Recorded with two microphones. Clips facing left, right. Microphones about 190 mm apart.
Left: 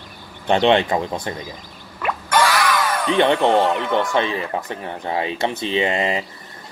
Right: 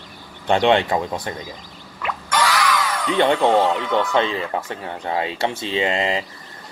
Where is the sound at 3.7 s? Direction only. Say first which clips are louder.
Even; 15° left (ahead or behind).